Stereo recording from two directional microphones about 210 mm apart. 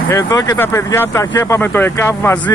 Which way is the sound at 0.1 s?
15° left (ahead or behind).